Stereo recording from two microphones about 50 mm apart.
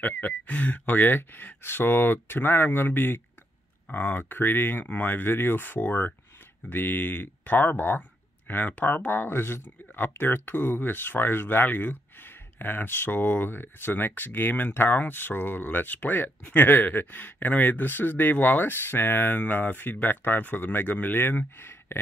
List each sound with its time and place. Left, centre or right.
0.0 s speech: left